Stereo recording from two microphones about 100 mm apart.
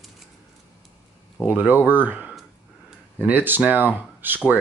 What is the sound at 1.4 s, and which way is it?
Speech, 15° right (ahead or behind).